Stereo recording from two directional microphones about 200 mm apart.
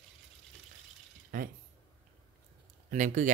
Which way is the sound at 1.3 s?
40° right (ahead or behind).